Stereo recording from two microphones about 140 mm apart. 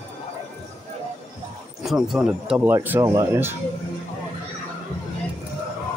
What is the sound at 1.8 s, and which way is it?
Speech, 5° right (ahead or behind).